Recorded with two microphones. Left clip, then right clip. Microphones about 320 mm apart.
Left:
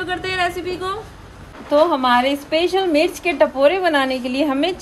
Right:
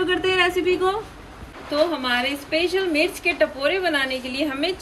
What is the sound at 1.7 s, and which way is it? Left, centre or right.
A woman's voice, left.